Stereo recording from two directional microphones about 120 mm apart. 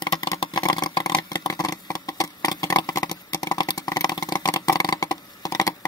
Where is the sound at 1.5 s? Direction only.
30° left (ahead or behind).